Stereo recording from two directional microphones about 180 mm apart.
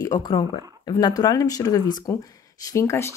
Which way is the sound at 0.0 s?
20° left (ahead or behind).